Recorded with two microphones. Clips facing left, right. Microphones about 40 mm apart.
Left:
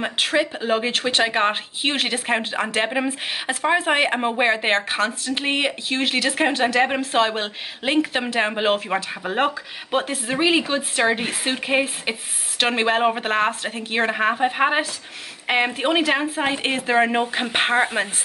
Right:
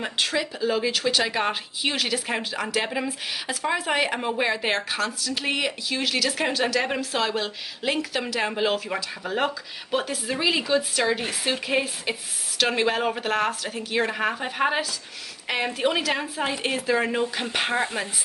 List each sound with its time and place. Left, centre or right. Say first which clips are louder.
0.0 s speech: left 5 dB; left